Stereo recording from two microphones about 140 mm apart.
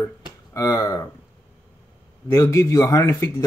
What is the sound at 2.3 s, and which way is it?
Speech, 20° left (ahead or behind).